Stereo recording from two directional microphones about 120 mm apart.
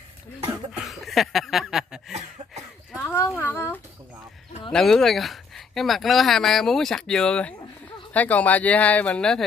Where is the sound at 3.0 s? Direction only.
20° left (ahead or behind).